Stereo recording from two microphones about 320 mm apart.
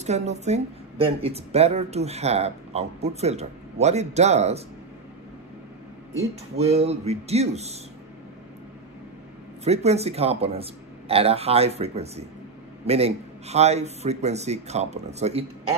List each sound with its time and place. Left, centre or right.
0.0 s a woman's voice: right
6.1 s a woman's voice: centre
9.7 s a woman's voice: centre